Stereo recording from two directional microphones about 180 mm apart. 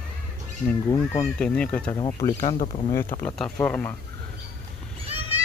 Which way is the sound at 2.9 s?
15° left (ahead or behind).